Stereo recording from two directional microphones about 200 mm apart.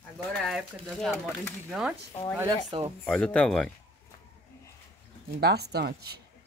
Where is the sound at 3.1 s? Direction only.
5° left (ahead or behind).